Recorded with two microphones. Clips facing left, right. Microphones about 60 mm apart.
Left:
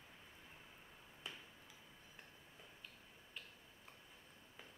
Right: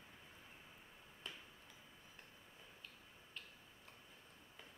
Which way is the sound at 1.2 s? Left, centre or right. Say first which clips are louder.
Left 1 dB; centre.